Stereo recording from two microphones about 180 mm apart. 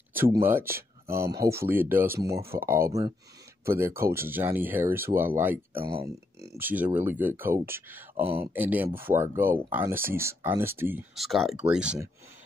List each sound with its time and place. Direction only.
0.1 s speech: 10° right (ahead or behind)
8.2 s speech: 30° right (ahead or behind)
8.5 s speech: 10° right (ahead or behind)
11.1 s speech: centre (ahead or behind)